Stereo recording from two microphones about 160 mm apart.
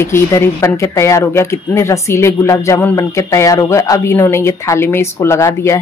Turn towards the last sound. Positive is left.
turn(degrees=15)  # may be behind; listen again after turning